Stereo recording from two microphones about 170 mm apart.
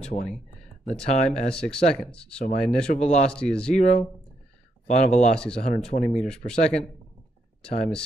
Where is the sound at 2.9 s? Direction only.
40° left (ahead or behind).